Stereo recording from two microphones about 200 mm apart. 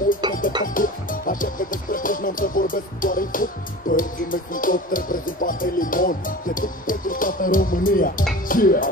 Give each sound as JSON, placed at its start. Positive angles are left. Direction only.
{"t": 0.2, "sound": "music", "side_deg": -20}
{"t": 0.7, "sound": "music", "side_deg": 45}